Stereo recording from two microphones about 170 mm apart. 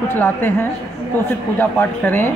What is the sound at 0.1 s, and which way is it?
Speech, 15° left (ahead or behind).